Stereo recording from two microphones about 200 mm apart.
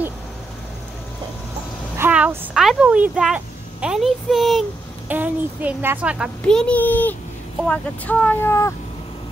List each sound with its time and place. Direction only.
2.0 s speech: 10° right (ahead or behind); by 8.7 s 15° left (ahead or behind)